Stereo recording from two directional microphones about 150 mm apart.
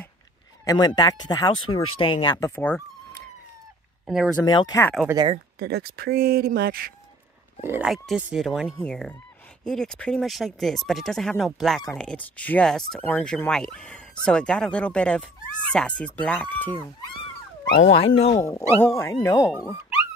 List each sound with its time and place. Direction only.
0.7 s speech: 30° left (ahead or behind)
2.5 s speech: 10° left (ahead or behind)
4.0 s speech: 5° right (ahead or behind)
4.5 s speech: 30° left (ahead or behind)
5.0 s speech: 25° right (ahead or behind)
5.6 s speech: 90° right
7.6 s speech: 15° right (ahead or behind)
7.9 s speech: 5° right (ahead or behind); by 16.8 s 10° left (ahead or behind)
17.7 s speech: 40° left (ahead or behind)
18.8 s speech: 20° left (ahead or behind)
19.5 s speech: 15° right (ahead or behind)